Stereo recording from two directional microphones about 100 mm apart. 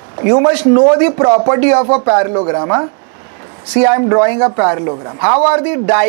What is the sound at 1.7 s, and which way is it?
Speech, 40° right (ahead or behind).